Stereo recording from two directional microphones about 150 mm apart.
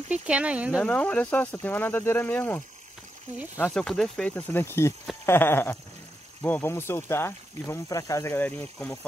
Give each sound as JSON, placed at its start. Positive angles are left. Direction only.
{"t": 0.1, "sound": "speech", "side_deg": -10}
{"t": 0.8, "sound": "speech", "side_deg": 10}
{"t": 3.7, "sound": "speech", "side_deg": 0}